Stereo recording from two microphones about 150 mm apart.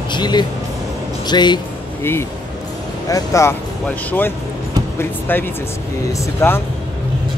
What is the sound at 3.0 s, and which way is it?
Speech, 20° left (ahead or behind).